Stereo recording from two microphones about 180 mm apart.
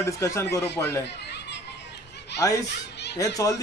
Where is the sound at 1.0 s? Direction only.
70° left (ahead or behind).